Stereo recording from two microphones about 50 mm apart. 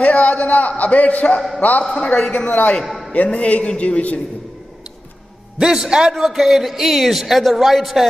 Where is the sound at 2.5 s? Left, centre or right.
Left.